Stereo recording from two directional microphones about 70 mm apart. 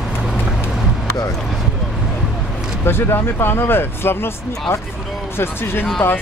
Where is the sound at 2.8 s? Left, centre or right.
Left.